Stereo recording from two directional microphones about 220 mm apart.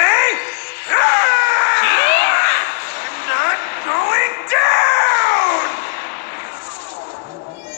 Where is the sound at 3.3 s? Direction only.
40° left (ahead or behind).